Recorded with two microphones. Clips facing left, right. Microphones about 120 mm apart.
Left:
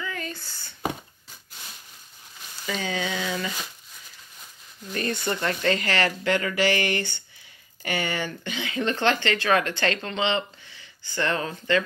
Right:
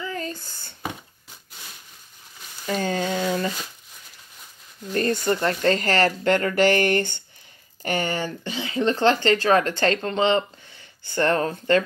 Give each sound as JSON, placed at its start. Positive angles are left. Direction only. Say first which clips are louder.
{"t": 0.0, "sound": "a sound", "louder": "right 3 dB", "side_deg": -35}
{"t": 2.6, "sound": "frying", "louder": "right 4 dB", "side_deg": -45}
{"t": 4.9, "sound": "speech", "louder": "right 6 dB", "side_deg": -40}